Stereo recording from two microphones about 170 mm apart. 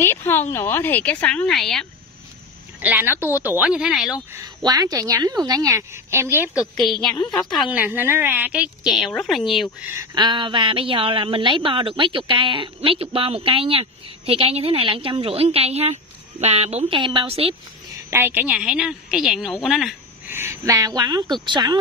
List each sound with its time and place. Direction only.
0.0 s a woman's voice: 15° left (ahead or behind)
2.8 s a woman's voice: 10° right (ahead or behind)
4.3 s a woman's voice: 20° right (ahead or behind); by 7.1 s centre (ahead or behind)
7.1 s a woman's voice: 25° left (ahead or behind)
7.3 s a woman's voice: centre (ahead or behind)
9.9 s a woman's voice: 25° right (ahead or behind)
18.1 s a woman's voice: 10° right (ahead or behind)
20.2 s a woman's voice: 15° right (ahead or behind)